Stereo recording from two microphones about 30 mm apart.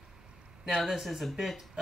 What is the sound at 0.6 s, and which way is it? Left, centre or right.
Speech, centre.